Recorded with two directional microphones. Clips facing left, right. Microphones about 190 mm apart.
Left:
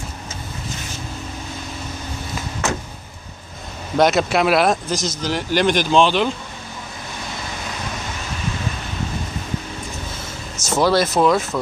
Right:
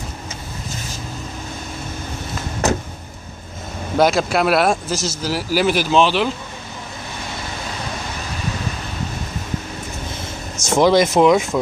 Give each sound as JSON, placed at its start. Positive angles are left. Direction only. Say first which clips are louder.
{"t": 3.9, "sound": "speech", "louder": "even", "side_deg": 0}
{"t": 10.7, "sound": "speech", "louder": "right 3 dB", "side_deg": -15}